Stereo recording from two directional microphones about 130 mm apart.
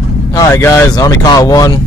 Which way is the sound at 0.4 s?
20° left (ahead or behind).